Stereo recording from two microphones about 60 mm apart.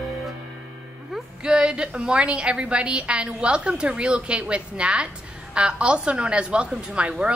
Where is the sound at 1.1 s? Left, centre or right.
Centre.